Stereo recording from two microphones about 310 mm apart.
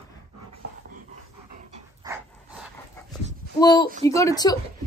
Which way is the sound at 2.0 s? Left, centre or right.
Centre.